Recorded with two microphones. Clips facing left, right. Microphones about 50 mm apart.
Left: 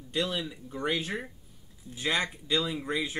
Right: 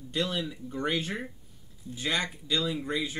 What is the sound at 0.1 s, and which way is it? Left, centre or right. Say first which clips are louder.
Speech: even; centre.